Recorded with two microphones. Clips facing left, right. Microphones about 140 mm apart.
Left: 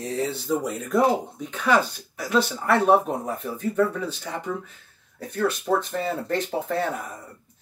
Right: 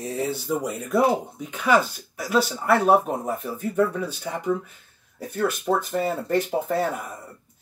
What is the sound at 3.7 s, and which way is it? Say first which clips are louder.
Speech: right 1 dB; 10° right (ahead or behind).